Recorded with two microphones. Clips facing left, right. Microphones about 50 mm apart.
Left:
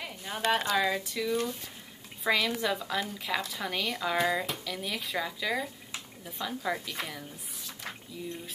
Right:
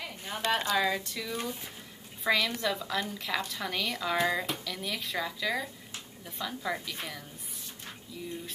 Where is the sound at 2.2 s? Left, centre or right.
Centre.